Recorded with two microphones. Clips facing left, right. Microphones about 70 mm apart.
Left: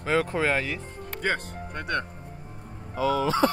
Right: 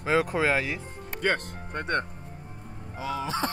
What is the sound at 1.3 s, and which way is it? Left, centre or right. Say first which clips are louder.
Speech: right 1 dB; right.